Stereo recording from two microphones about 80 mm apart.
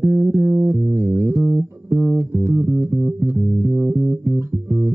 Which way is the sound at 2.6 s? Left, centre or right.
Centre.